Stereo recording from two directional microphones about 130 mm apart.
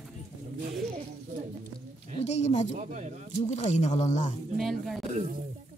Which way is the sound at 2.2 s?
60° left (ahead or behind).